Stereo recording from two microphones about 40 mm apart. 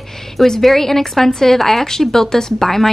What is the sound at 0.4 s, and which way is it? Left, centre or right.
A woman's voice, centre.